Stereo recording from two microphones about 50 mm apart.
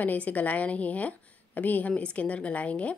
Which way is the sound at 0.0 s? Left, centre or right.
Left.